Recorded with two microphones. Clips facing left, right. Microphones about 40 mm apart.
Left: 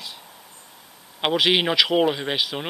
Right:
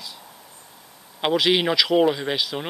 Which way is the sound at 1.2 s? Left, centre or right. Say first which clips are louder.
Even; centre.